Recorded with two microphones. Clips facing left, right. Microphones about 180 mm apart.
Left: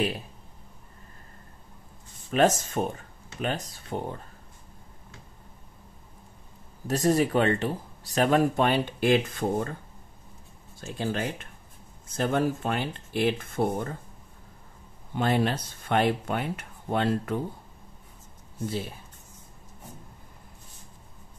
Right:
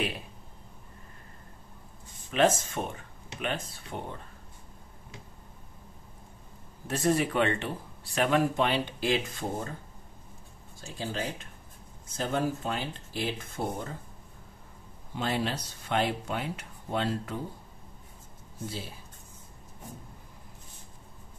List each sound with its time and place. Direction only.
2.3 s speech: 40° left (ahead or behind)
6.9 s speech: 35° left (ahead or behind); by 9.8 s 60° left (ahead or behind)
10.8 s speech: 60° left (ahead or behind)
15.1 s speech: 55° left (ahead or behind)